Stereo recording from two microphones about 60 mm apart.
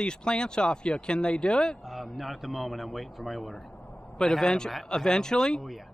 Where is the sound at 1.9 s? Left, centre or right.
Centre.